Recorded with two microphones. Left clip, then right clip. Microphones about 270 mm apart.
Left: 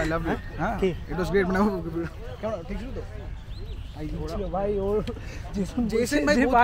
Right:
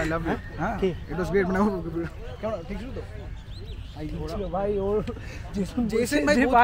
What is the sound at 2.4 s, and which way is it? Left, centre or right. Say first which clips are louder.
Speech: even; centre.